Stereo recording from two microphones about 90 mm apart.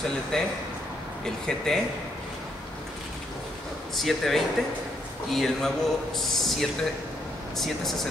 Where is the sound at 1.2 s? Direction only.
5° left (ahead or behind).